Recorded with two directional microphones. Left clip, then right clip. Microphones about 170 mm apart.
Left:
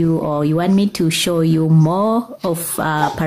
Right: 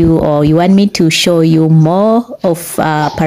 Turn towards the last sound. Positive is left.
turn(degrees=-30)  # may be behind; listen again after turning